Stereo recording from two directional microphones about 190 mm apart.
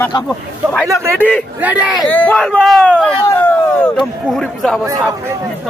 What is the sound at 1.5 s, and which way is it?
Speech, 10° right (ahead or behind).